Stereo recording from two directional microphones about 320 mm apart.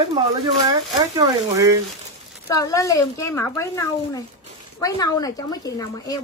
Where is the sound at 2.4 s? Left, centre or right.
Centre.